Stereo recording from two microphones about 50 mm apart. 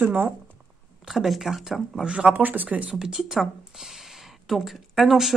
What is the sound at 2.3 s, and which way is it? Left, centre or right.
Speech, right.